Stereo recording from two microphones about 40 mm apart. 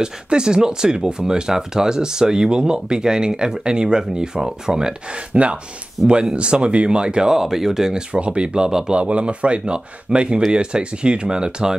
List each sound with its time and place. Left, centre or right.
0.0 s speech: centre
6.0 s speech: centre
6.3 s speech: right
8.1 s speech: right
8.6 s speech: centre
8.9 s speech: right